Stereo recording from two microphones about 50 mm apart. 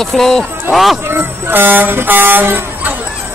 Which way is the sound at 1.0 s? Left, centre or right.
Right.